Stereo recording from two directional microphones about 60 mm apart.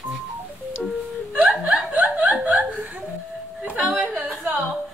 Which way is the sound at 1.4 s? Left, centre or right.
Centre.